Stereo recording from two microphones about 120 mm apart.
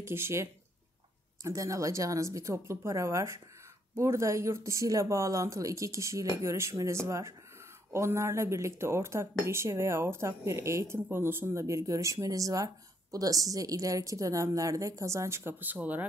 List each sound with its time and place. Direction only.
0.0 s speech: 20° right (ahead or behind)